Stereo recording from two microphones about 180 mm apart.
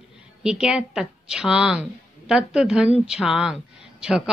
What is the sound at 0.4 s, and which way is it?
A woman's voice, 5° right (ahead or behind).